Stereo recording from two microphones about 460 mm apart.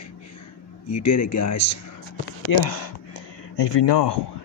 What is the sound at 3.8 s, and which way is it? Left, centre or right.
Speech, left.